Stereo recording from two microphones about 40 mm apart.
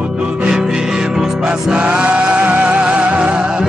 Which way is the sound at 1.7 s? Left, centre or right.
Right.